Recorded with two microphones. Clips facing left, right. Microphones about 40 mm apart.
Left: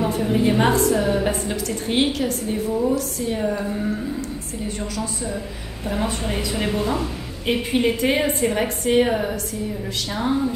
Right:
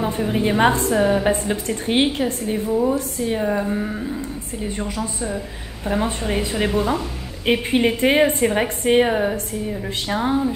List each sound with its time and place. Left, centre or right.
0.2 s a woman's voice: centre
6.5 s a woman's voice: centre